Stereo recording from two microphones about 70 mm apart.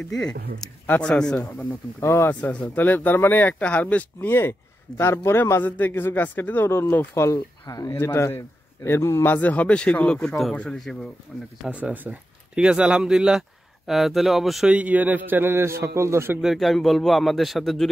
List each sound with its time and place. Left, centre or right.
0.1 s speech: centre
0.8 s speech: centre
2.0 s a man's voice: left
2.4 s speech: left
4.3 s a man's voice: left
7.6 s speech: left
7.9 s a man's voice: left
9.3 s speech: left
10.8 s a man's voice: centre
11.7 s speech: right; by 14.7 s centre
14.7 s a man's voice: right
16.3 s a man's voice: centre